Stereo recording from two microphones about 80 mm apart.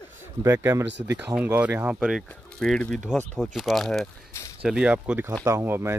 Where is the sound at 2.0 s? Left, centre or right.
Centre.